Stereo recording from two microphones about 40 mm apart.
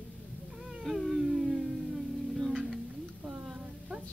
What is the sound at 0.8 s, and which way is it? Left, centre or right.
Speech, centre.